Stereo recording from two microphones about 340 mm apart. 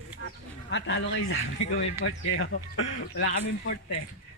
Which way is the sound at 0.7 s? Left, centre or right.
Left.